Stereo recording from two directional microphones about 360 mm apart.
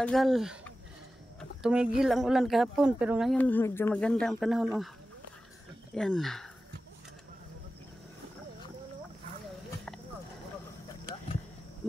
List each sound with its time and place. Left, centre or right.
0.0 s speech: centre
1.4 s a sound: centre
2.0 s speech: centre
5.9 s speech: centre